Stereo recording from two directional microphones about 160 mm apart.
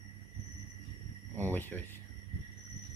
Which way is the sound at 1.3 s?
10° left (ahead or behind).